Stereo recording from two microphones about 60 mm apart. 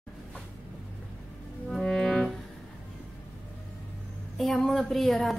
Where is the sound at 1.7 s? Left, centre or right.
Centre.